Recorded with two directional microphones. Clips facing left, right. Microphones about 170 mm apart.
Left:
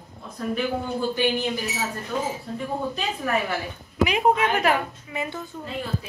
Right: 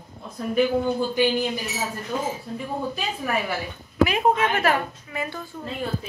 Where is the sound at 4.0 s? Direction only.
15° left (ahead or behind).